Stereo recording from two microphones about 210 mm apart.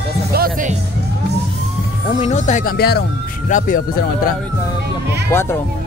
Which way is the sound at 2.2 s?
35° left (ahead or behind).